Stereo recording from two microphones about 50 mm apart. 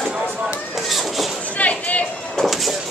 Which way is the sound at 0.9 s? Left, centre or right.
Centre.